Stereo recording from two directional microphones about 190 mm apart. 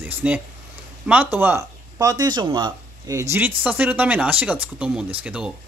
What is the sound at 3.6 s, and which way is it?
Speech, 10° right (ahead or behind).